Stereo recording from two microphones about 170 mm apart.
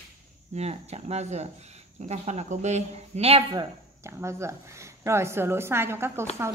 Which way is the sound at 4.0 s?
15° right (ahead or behind).